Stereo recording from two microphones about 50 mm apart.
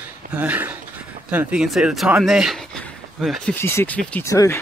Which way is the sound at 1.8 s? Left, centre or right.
Centre.